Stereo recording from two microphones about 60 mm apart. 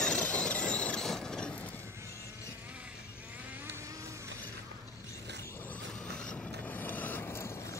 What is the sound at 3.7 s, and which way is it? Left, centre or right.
Vehicle, right.